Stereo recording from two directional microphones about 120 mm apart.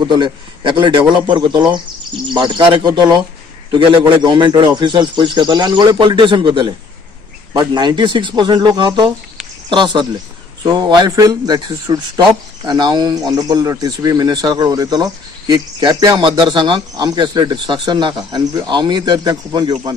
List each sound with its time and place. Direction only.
0.0 s speech: 40° right (ahead or behind)